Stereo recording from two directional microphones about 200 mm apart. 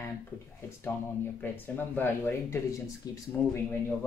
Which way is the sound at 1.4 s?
10° left (ahead or behind).